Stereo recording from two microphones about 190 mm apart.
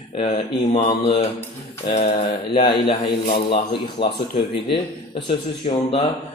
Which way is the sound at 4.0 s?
25° left (ahead or behind).